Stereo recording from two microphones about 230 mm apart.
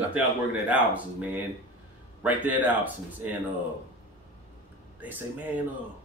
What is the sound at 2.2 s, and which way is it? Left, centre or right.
Speech, centre.